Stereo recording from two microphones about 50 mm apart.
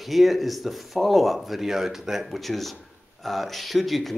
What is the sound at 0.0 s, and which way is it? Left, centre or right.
Speech, centre.